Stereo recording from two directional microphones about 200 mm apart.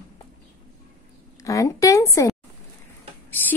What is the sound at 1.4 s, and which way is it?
Speech, 15° left (ahead or behind).